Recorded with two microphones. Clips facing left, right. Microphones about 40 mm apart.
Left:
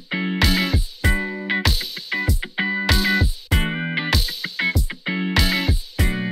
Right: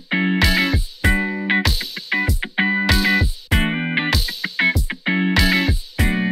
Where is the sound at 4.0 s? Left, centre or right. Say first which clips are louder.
Right 5 dB; right.